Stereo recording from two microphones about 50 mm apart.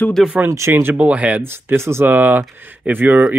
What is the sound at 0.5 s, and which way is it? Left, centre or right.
Speech, right.